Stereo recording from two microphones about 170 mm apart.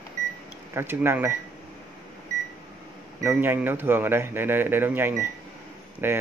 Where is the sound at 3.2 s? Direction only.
15° right (ahead or behind).